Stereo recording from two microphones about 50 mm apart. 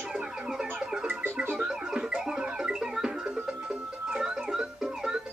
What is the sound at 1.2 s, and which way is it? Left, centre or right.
Music, right.